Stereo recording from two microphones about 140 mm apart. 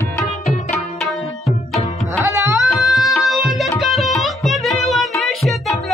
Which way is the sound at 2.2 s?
20° right (ahead or behind).